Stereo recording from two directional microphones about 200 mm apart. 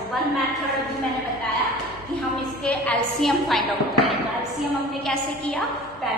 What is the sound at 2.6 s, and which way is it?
A woman's voice, 5° left (ahead or behind).